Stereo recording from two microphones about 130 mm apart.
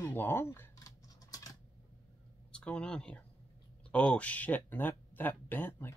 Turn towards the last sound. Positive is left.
turn(degrees=15)  # may be behind; listen again after turning